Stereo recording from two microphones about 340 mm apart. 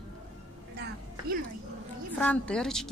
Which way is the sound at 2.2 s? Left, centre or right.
Centre.